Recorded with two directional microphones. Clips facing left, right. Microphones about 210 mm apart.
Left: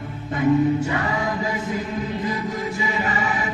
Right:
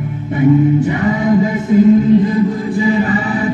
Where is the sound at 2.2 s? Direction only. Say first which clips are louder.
Right 10 dB; 30° right (ahead or behind).